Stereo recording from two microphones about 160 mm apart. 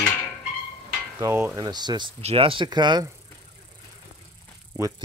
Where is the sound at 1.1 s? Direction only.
10° right (ahead or behind).